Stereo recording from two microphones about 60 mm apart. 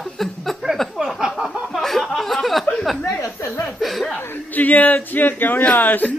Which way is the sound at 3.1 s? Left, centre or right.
Left.